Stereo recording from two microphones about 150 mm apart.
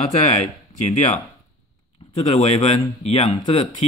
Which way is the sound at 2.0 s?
35° left (ahead or behind).